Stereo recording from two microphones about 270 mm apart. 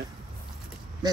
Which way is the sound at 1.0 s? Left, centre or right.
Centre.